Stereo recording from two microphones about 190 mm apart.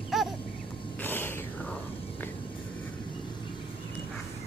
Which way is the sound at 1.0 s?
10° left (ahead or behind).